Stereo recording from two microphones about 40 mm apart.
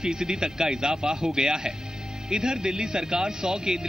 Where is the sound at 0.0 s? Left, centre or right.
Centre.